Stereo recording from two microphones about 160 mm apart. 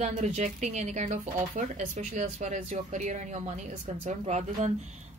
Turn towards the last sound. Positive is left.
turn(degrees=-45)  # may be behind; listen again after turning